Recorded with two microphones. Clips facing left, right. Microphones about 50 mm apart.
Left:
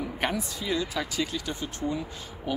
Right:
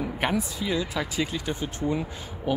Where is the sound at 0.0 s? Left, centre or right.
Centre.